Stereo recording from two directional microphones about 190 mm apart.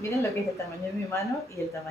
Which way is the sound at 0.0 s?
15° left (ahead or behind).